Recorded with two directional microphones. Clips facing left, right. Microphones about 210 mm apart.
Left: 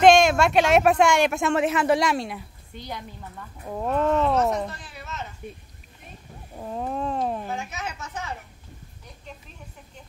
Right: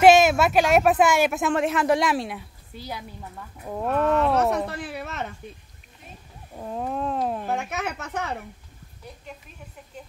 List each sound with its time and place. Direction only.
0.0 s speech: 5° right (ahead or behind)
4.6 s speech: 65° right (ahead or behind)
6.5 s speech: centre (ahead or behind)
7.4 s speech: 60° right (ahead or behind)